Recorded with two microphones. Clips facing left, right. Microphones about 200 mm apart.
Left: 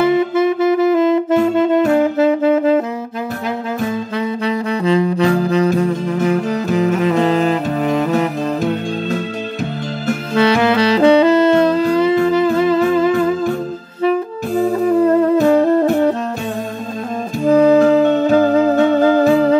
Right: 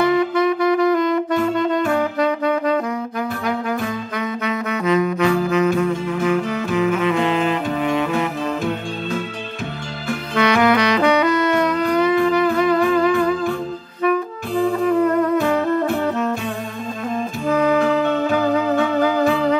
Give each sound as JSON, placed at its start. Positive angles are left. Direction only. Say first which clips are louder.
{"t": 0.0, "sound": "saxophone", "louder": "left 3 dB", "side_deg": 25}
{"t": 4.5, "sound": "saxophone", "louder": "left 3 dB", "side_deg": 30}
{"t": 10.3, "sound": "saxophone", "louder": "left 2 dB", "side_deg": 30}
{"t": 14.5, "sound": "saxophone", "louder": "left 3 dB", "side_deg": 40}
{"t": 17.5, "sound": "music", "louder": "left 7 dB", "side_deg": 30}